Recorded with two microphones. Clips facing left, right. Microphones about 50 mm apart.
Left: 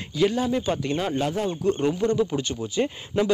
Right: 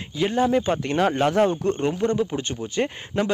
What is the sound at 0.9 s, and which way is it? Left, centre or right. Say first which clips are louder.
Speech: right 5 dB; right.